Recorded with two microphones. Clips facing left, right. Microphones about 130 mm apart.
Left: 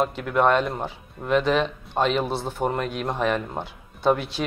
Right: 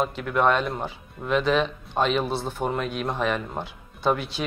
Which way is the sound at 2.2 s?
15° left (ahead or behind).